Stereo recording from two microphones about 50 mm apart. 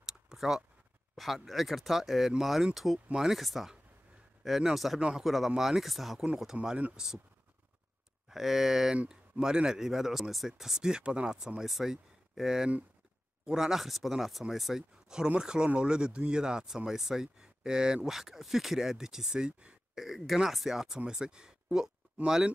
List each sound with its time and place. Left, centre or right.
0.0 s a sound: centre
1.1 s speech: centre
6.2 s speech: centre
8.3 s speech: centre
20.0 s speech: centre